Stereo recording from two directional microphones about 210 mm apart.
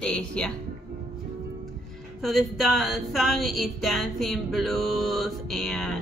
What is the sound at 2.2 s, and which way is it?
A woman's voice, centre (ahead or behind).